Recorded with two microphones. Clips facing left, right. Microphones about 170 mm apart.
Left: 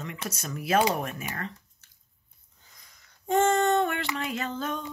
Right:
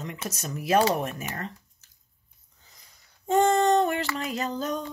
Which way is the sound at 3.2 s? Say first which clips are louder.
Right 2 dB; 35° right (ahead or behind).